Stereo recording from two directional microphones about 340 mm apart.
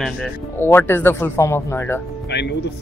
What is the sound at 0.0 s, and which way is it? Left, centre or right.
Speech, centre.